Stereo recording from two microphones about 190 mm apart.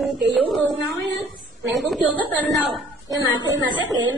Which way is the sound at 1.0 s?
70° right (ahead or behind).